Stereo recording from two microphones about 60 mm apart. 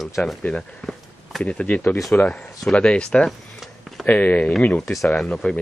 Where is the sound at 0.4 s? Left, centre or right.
Left.